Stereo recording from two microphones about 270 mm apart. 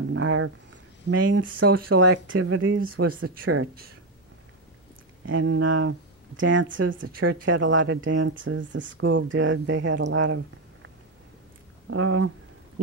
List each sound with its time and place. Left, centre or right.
0.1 s speech: right
3.0 s speech: right
3.3 s speech: right
5.2 s speech: right
11.9 s speech: right